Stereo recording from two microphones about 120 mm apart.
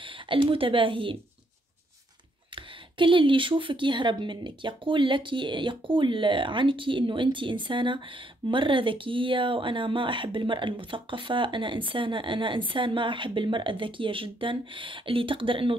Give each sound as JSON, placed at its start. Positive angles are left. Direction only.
{"t": 0.0, "sound": "speech", "side_deg": -45}
{"t": 2.5, "sound": "speech", "side_deg": -45}